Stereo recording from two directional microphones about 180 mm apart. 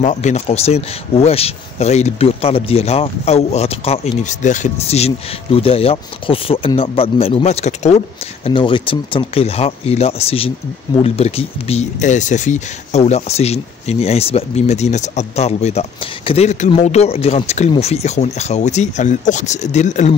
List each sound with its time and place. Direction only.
0.0 s speech: 40° left (ahead or behind)